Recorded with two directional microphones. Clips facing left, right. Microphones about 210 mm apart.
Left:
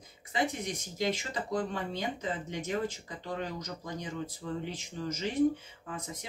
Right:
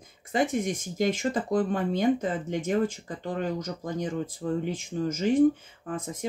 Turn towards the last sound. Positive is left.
turn(degrees=-50)  # may be behind; listen again after turning